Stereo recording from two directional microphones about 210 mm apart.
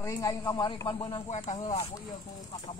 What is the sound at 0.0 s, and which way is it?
Speech, 15° left (ahead or behind).